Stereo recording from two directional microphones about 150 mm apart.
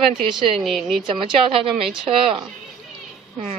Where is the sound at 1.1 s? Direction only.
35° right (ahead or behind).